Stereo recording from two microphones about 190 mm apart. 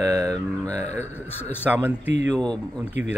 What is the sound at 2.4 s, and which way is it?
Mantra, 5° left (ahead or behind).